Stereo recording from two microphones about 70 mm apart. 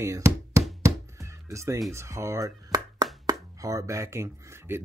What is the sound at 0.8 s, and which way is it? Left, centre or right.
Music, right.